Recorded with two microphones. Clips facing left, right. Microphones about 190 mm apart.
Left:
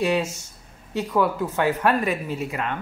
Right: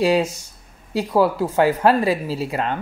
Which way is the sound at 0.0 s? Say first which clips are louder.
Right 5 dB; 35° right (ahead or behind).